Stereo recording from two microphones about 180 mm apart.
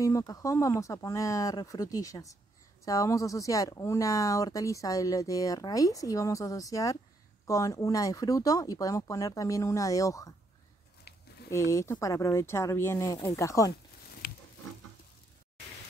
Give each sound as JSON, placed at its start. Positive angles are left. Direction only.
{"t": 0.0, "sound": "speech", "side_deg": 20}
{"t": 11.1, "sound": "a sound", "side_deg": 60}
{"t": 11.5, "sound": "speech", "side_deg": 15}